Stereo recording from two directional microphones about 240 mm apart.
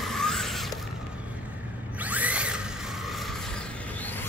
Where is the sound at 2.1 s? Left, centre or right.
Centre.